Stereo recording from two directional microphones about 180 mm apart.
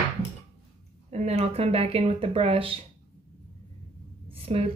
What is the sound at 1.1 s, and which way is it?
Speech, 35° right (ahead or behind).